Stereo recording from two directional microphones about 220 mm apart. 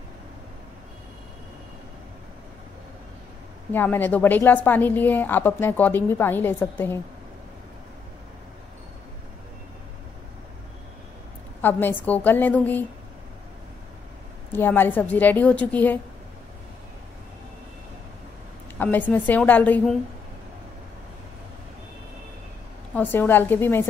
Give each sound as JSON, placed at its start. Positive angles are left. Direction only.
{"t": 3.7, "sound": "a woman's voice", "side_deg": 10}
{"t": 11.6, "sound": "a woman's voice", "side_deg": 10}
{"t": 14.5, "sound": "a woman's voice", "side_deg": 10}
{"t": 18.8, "sound": "a woman's voice", "side_deg": 10}
{"t": 22.9, "sound": "a woman's voice", "side_deg": 10}